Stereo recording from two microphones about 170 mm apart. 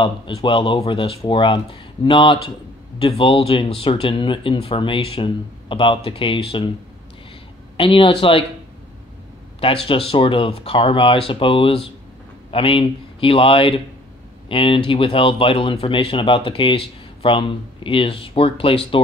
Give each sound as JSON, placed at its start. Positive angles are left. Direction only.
{"t": 0.0, "sound": "speech", "side_deg": 30}
{"t": 7.7, "sound": "speech", "side_deg": 30}
{"t": 9.6, "sound": "a man's voice", "side_deg": 35}